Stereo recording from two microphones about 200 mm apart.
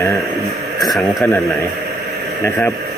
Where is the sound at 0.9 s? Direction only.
Centre (ahead or behind).